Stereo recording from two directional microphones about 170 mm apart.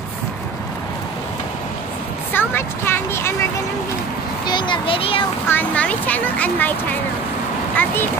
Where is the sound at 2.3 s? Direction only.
10° left (ahead or behind).